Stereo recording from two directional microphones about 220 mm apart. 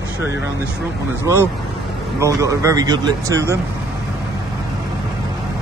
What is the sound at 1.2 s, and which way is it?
Speech, 10° right (ahead or behind).